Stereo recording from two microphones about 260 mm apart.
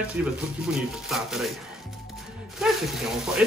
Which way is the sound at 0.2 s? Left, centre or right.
Centre.